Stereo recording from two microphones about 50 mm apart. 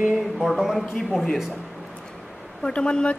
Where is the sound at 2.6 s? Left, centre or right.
Centre.